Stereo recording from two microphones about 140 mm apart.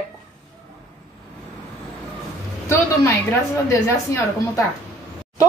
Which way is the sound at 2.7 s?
20° left (ahead or behind).